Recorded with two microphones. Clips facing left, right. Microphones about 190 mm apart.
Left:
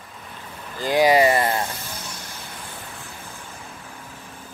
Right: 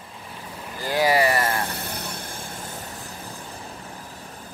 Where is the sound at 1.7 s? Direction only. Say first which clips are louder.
Right 3 dB; 65° right (ahead or behind).